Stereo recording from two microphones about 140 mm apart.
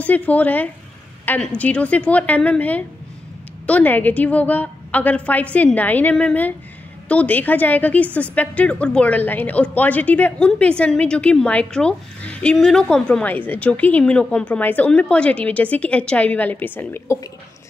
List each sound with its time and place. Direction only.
0.0 s a woman's voice: 10° left (ahead or behind)